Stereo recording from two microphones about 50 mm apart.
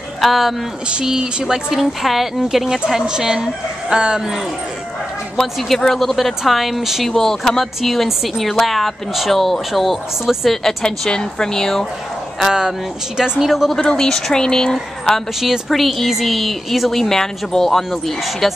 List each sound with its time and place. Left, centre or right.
0.2 s speech: centre
0.8 s speech: centre
5.4 s speech: centre
7.1 s a woman's voice: centre
12.4 s speech: centre
13.8 s a woman's voice: centre
15.7 s speech: centre